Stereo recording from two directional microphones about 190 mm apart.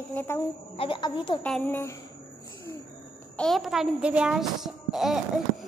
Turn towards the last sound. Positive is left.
turn(degrees=0)  # may be behind; listen again after turning